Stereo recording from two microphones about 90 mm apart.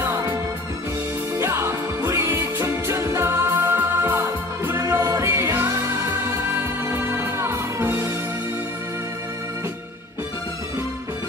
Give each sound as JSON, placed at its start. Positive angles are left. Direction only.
{"t": 1.4, "sound": "music", "side_deg": -30}
{"t": 4.9, "sound": "music", "side_deg": -35}
{"t": 6.9, "sound": "music", "side_deg": -30}